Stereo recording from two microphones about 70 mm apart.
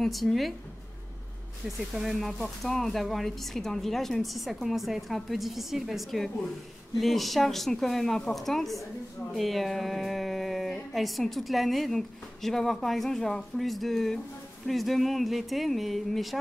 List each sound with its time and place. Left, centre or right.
0.0 s speech: centre
2.0 s speech: centre